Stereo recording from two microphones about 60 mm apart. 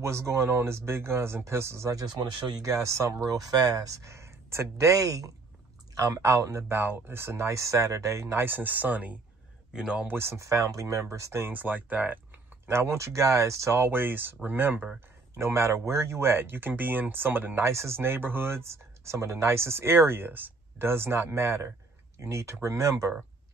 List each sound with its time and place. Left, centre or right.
0.0 s speech: right
2.5 s speech: right
8.4 s speech: right
9.7 s speech: centre
10.0 s speech: right
11.5 s speech: right
12.6 s speech: right
15.3 s speech: right
17.6 s speech: right